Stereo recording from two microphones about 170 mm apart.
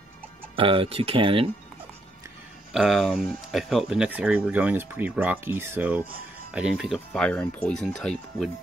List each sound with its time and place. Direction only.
0.6 s speech: 30° right (ahead or behind)
2.7 s speech: centre (ahead or behind)